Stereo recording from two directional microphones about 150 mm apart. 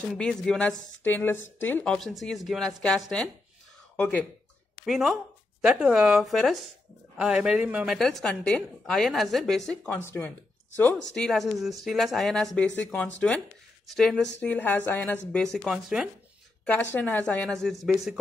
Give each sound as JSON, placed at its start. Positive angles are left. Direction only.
{"t": 0.2, "sound": "a woman's voice", "side_deg": 5}
{"t": 2.0, "sound": "a woman's voice", "side_deg": 0}
{"t": 4.8, "sound": "a woman's voice", "side_deg": 0}
{"t": 10.0, "sound": "speech", "side_deg": 15}
{"t": 11.1, "sound": "a woman's voice", "side_deg": 0}
{"t": 16.6, "sound": "speech", "side_deg": 10}